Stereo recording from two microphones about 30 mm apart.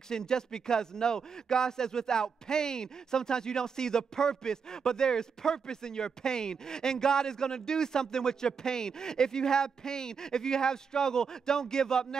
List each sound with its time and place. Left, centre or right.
0.1 s speech: left